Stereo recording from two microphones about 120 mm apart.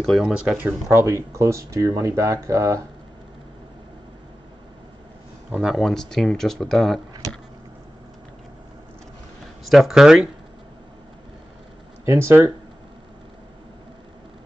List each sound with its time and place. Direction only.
0.0 s speech: centre (ahead or behind)
0.8 s speech: 25° right (ahead or behind)
5.5 s speech: 5° right (ahead or behind)
9.7 s speech: centre (ahead or behind)
12.0 s speech: 20° right (ahead or behind)